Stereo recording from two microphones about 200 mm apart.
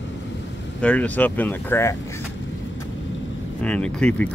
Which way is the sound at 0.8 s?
5° left (ahead or behind).